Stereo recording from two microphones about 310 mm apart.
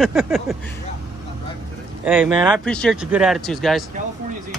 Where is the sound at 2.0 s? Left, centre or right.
Centre.